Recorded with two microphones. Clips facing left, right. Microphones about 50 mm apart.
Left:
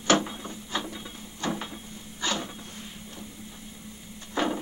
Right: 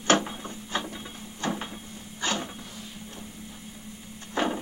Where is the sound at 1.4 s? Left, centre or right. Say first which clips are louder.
Even; right.